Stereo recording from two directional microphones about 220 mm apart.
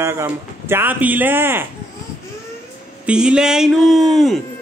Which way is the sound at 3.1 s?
5° right (ahead or behind).